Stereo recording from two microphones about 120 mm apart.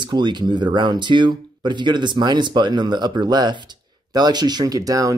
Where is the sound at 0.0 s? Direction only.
40° right (ahead or behind).